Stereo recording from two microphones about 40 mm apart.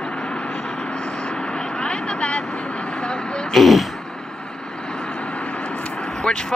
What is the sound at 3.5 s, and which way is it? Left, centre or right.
Vehicle, centre.